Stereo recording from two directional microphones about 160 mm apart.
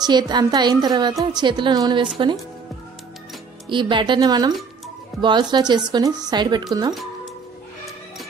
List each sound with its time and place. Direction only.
0.0 s a woman's voice: 25° right (ahead or behind)
3.6 s a woman's voice: 30° right (ahead or behind)